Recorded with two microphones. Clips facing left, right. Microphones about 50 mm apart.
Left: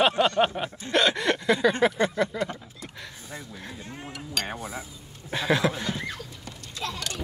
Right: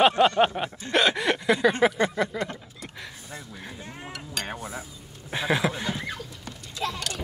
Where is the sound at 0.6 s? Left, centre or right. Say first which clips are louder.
Right 1 dB; centre.